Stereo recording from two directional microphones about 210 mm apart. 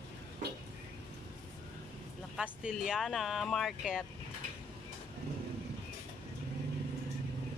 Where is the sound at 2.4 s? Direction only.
5° right (ahead or behind).